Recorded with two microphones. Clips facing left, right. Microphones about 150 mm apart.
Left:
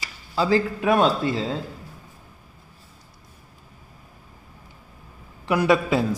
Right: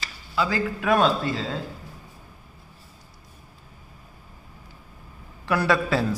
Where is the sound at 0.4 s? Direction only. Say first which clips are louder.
Left 4 dB; 25° left (ahead or behind).